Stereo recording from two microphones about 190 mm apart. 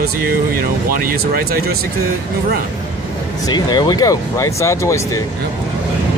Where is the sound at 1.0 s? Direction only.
50° right (ahead or behind).